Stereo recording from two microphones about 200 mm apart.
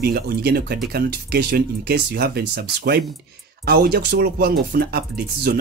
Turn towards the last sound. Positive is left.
turn(degrees=-50)  # may be behind; listen again after turning